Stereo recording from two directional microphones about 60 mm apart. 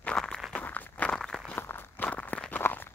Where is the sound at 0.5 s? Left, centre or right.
Left.